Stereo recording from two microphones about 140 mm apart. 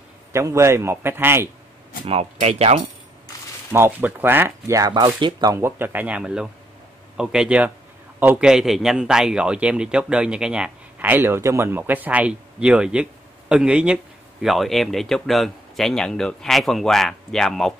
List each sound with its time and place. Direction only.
0.3 s a man's voice: 20° right (ahead or behind)
2.0 s speech: 45° right (ahead or behind)
3.7 s speech: 15° right (ahead or behind)
5.6 s a man's voice: 15° right (ahead or behind); by 17.7 s 5° left (ahead or behind)